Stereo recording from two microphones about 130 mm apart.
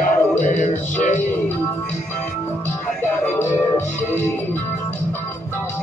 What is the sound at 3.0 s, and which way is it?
Speech, 20° left (ahead or behind).